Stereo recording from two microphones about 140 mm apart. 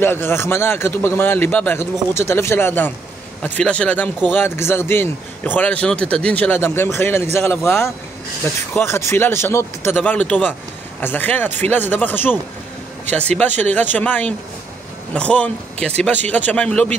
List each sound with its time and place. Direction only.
0.0 s a man's voice: 15° left (ahead or behind)
13.4 s a man's voice: 10° left (ahead or behind)